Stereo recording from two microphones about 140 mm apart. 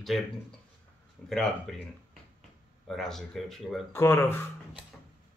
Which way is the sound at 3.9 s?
15° left (ahead or behind).